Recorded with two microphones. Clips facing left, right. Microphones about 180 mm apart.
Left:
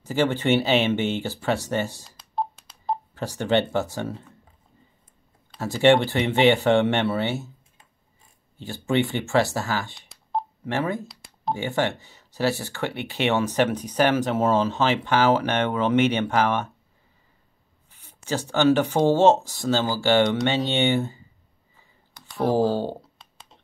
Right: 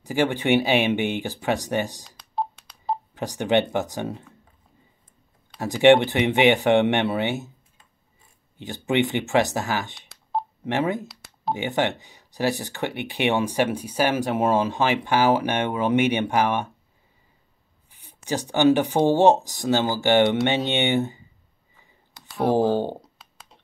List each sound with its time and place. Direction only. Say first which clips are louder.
0.0 s speech: even; 15° right (ahead or behind)
2.0 s telephone dialing: even; centre (ahead or behind)
3.2 s speech: right 1 dB; 15° right (ahead or behind)
5.6 s speech: right 2 dB; 15° right (ahead or behind)
8.5 s speech: right 1 dB; 20° right (ahead or behind)
9.9 s telephone dialing: even; centre (ahead or behind)
10.6 s speech: right 3 dB; 20° right (ahead or behind)
17.9 s speech: right 1 dB; 15° right (ahead or behind)
22.5 s speech: right 1 dB; 20° right (ahead or behind)